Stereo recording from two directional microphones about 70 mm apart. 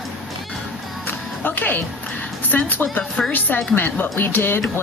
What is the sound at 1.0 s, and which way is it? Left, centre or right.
Music, left.